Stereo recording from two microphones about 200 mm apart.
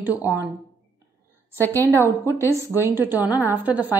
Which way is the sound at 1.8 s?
10° right (ahead or behind).